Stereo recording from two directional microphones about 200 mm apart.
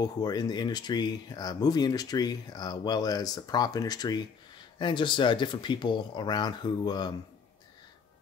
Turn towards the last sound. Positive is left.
turn(degrees=20)  # may be behind; listen again after turning